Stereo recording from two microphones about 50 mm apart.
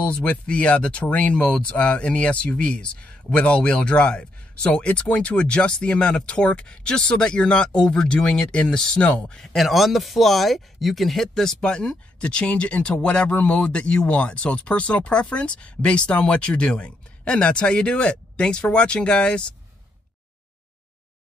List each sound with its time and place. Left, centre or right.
0.0 s speech: left
9.4 s speech: centre